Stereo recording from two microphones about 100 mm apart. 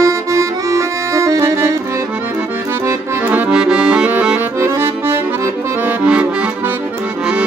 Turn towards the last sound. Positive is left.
turn(degrees=-10)  # may be behind; listen again after turning